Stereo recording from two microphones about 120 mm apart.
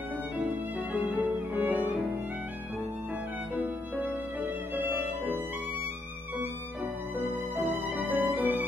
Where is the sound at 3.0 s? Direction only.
15° right (ahead or behind).